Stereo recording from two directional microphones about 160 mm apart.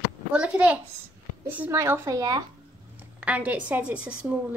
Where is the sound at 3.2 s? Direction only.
10° right (ahead or behind).